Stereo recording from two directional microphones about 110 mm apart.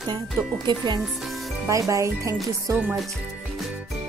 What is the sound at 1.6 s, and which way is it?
Speech, 30° right (ahead or behind).